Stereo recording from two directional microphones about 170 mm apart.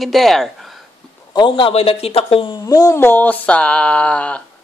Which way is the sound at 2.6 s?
20° left (ahead or behind).